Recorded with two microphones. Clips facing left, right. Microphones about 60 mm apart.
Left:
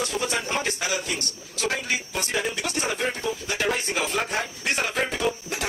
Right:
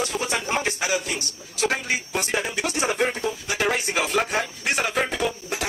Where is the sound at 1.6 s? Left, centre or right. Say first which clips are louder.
Right 3 dB; right.